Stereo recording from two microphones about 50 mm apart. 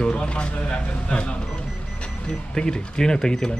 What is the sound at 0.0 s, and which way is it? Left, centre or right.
A man's voice, left.